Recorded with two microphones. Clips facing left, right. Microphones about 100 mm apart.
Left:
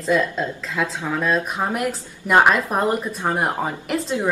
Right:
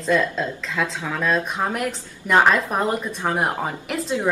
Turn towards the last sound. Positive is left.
turn(degrees=0)  # may be behind; listen again after turning